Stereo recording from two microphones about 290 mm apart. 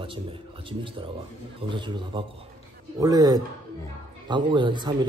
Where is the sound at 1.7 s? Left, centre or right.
Centre.